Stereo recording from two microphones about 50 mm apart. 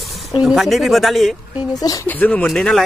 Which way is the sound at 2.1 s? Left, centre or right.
Left.